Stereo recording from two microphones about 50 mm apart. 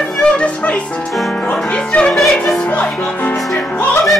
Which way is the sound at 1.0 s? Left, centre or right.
Centre.